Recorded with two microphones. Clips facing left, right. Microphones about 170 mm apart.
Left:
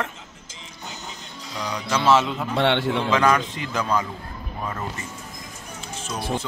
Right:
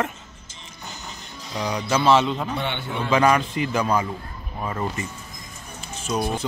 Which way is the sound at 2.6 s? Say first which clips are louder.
Left 7 dB; 90° left.